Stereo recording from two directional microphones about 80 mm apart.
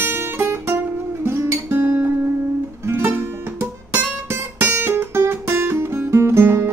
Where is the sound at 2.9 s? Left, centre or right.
Right.